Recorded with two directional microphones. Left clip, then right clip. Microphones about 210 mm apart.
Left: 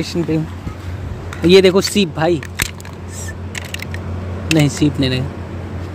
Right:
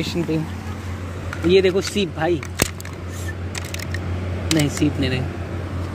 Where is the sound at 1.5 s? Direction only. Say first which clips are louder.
Left 6 dB; 40° left (ahead or behind).